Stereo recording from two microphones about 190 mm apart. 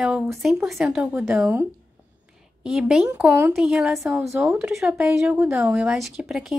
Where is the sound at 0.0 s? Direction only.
Centre (ahead or behind).